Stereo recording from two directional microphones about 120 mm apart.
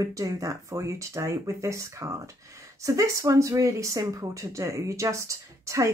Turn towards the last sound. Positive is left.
turn(degrees=-25)  # may be behind; listen again after turning